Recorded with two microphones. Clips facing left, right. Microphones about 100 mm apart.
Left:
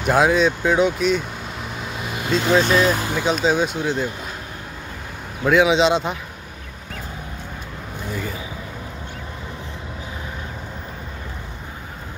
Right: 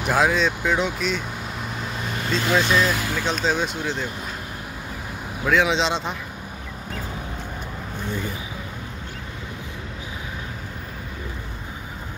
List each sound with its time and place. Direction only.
0.0 s vehicle: centre (ahead or behind)
2.9 s speech: 30° left (ahead or behind)
3.3 s speech: 5° left (ahead or behind)
5.4 s speech: 5° left (ahead or behind)